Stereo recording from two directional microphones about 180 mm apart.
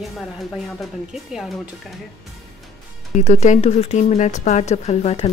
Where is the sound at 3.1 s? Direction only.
40° left (ahead or behind).